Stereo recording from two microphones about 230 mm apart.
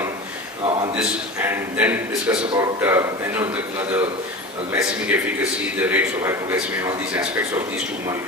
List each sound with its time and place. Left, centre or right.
0.9 s a man's voice: centre